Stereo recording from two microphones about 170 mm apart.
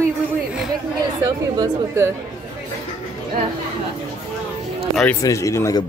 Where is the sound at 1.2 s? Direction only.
20° right (ahead or behind).